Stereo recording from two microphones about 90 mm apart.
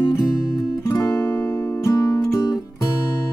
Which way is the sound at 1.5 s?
40° left (ahead or behind).